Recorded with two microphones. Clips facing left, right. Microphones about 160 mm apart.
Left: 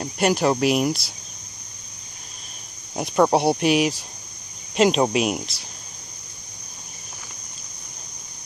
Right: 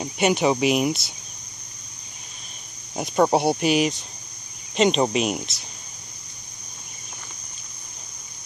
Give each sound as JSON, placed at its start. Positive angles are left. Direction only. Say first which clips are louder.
{"t": 0.0, "sound": "speech", "louder": "even", "side_deg": 0}
{"t": 3.0, "sound": "speech", "louder": "left 1 dB", "side_deg": 0}